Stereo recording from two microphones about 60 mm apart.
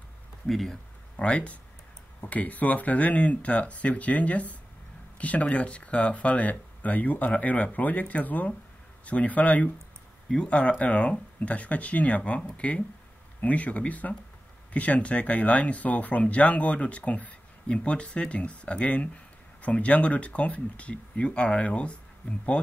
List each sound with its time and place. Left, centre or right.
0.5 s speech: centre
1.1 s speech: left